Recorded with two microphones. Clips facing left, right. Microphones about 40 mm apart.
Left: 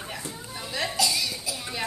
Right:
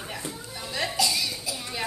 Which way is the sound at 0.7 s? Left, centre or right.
Centre.